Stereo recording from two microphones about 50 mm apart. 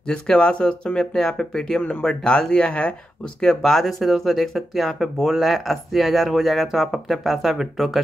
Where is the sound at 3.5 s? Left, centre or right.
Centre.